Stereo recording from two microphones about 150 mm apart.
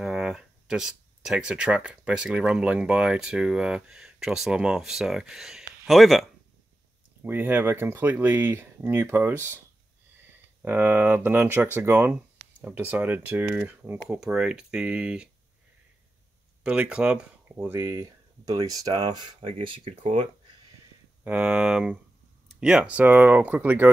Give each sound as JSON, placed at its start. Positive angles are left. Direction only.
{"t": 0.0, "sound": "speech", "side_deg": -5}
{"t": 7.2, "sound": "speech", "side_deg": -10}
{"t": 10.6, "sound": "speech", "side_deg": -10}
{"t": 16.6, "sound": "speech", "side_deg": -5}
{"t": 21.2, "sound": "speech", "side_deg": -10}